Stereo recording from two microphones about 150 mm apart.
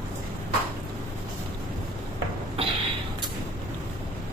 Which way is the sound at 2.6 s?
40° right (ahead or behind).